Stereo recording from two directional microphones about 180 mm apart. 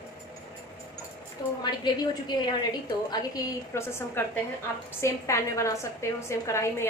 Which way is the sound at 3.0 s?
20° left (ahead or behind).